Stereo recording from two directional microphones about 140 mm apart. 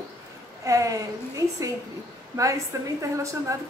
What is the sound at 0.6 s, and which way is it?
Speech, 25° right (ahead or behind).